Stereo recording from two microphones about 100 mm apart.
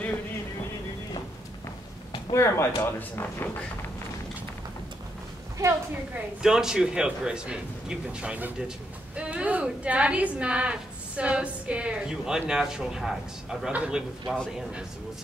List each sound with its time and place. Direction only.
2.3 s speech: 30° left (ahead or behind)
6.4 s a woman's voice: 5° right (ahead or behind)